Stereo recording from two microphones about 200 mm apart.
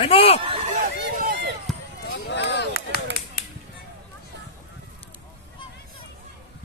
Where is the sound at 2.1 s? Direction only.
55° left (ahead or behind).